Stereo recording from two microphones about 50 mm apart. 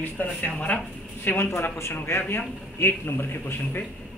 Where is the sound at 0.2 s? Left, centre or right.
Left.